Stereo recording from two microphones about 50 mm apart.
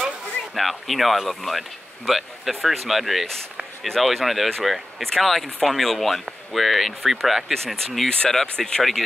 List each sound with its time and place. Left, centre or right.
0.6 s speech: centre
5.0 s speech: centre
7.5 s speech: centre